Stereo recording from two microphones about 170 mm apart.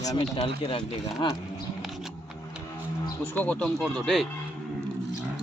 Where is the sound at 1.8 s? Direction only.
Centre (ahead or behind).